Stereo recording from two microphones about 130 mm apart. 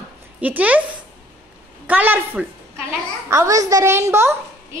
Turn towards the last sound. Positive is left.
turn(degrees=-20)  # may be behind; listen again after turning